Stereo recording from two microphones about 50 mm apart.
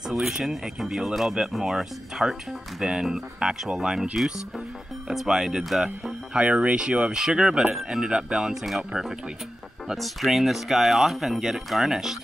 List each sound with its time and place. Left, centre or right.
0.1 s speech: centre
6.0 s speech: right
8.6 s speech: centre